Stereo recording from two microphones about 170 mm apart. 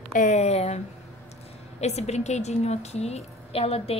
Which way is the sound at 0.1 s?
45° left (ahead or behind).